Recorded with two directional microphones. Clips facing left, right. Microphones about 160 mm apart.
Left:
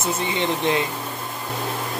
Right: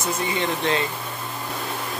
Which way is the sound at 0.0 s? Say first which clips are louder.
Left 1 dB; 20° left (ahead or behind).